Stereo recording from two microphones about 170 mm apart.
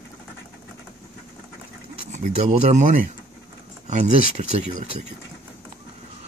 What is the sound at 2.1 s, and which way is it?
Speech, 45° right (ahead or behind).